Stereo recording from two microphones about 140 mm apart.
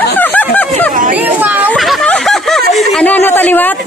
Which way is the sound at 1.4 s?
10° right (ahead or behind).